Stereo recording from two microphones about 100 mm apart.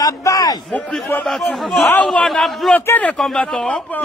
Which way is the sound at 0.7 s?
10° left (ahead or behind).